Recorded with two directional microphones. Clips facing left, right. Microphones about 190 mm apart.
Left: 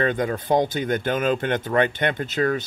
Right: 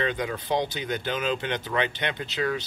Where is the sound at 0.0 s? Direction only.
50° left (ahead or behind).